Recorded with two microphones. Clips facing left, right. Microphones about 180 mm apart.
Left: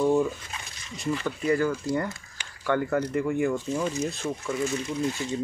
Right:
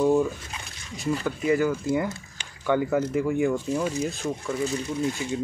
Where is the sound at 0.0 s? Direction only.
5° right (ahead or behind).